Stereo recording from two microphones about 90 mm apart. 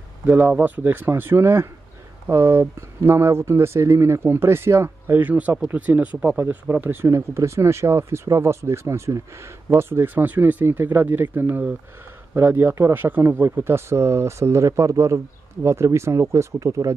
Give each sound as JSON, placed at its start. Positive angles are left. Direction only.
{"t": 0.3, "sound": "speech", "side_deg": -20}